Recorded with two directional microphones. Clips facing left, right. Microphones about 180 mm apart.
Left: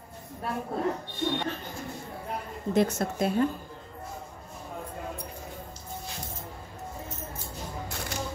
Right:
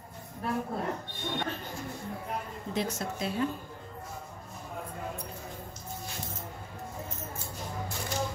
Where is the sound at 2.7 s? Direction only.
50° left (ahead or behind).